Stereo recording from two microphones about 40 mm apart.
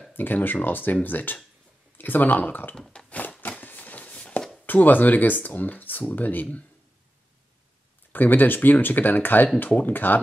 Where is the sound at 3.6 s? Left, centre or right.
Left.